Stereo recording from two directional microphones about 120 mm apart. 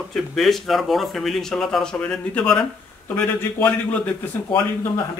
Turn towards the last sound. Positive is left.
turn(degrees=15)  # may be behind; listen again after turning